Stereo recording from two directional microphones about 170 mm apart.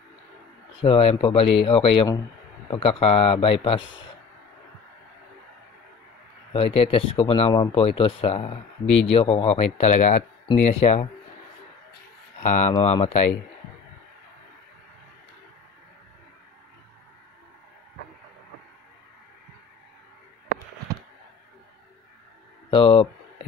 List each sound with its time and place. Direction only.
0.8 s speech: 35° left (ahead or behind)
6.5 s speech: 35° left (ahead or behind)
12.4 s speech: 45° left (ahead or behind)
22.7 s speech: 30° left (ahead or behind)